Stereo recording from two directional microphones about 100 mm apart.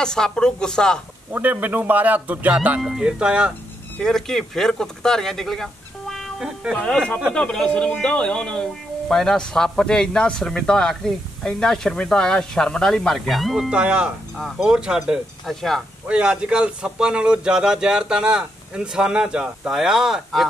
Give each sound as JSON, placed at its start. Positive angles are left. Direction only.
{"t": 0.0, "sound": "a man's voice", "side_deg": 5}
{"t": 1.3, "sound": "speech", "side_deg": -15}
{"t": 4.0, "sound": "a man's voice", "side_deg": 5}
{"t": 16.1, "sound": "speech", "side_deg": -10}